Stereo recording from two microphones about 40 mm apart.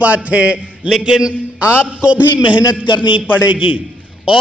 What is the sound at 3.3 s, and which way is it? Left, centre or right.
Speech, right.